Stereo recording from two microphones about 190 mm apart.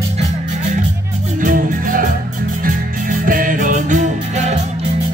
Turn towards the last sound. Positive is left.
turn(degrees=-40)  # may be behind; listen again after turning